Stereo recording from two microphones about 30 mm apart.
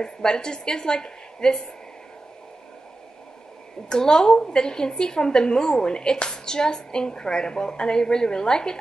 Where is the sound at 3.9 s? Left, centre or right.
Left.